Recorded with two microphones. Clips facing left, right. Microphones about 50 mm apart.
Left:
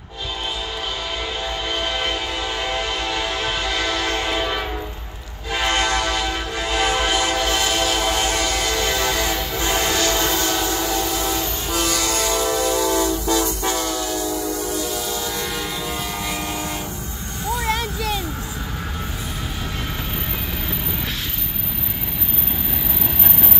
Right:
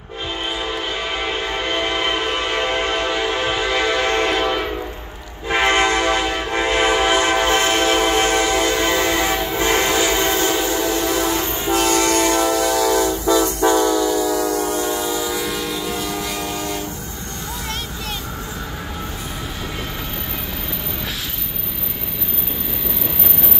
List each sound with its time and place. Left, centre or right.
1.8 s train horn: right
2.2 s train horn: right
3.1 s train: right
5.5 s train: right
9.9 s train: centre
11.7 s train: right
14.3 s train: right
15.0 s train: centre